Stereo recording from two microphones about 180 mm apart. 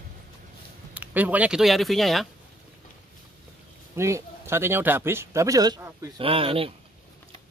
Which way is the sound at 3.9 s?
15° right (ahead or behind).